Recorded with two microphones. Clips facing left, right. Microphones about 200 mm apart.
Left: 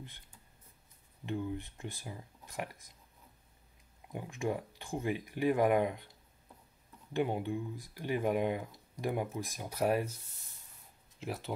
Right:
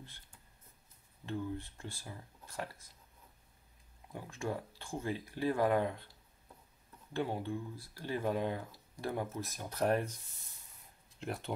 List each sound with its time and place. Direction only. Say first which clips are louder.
1.2 s speech: left 2 dB; 15° left (ahead or behind)
4.1 s speech: left 3 dB; 15° left (ahead or behind)
7.2 s speech: left 3 dB; 15° left (ahead or behind)
11.1 s speech: left 1 dB; centre (ahead or behind)